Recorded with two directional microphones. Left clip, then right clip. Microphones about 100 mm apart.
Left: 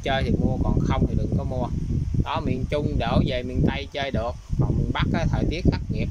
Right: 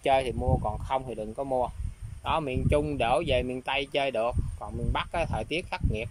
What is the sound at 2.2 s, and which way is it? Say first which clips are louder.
Speech: even; 15° right (ahead or behind).